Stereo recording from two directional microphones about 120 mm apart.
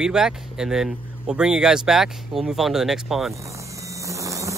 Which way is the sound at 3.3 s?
25° right (ahead or behind).